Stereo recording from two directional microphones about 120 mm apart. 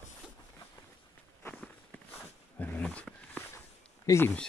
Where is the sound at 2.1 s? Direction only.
15° left (ahead or behind).